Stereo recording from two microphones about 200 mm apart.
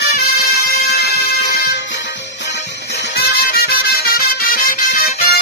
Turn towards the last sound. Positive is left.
turn(degrees=50)  # may be behind; listen again after turning